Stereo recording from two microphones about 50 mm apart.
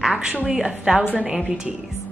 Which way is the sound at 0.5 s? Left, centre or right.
Centre.